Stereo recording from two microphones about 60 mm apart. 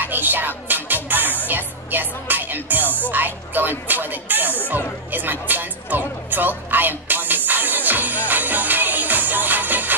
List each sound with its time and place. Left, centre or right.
0.0 s music: right